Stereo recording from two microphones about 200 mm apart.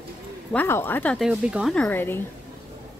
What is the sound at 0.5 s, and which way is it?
Speech, 10° left (ahead or behind).